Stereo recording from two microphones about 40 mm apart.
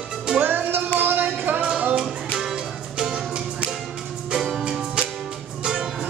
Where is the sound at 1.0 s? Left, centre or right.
Right.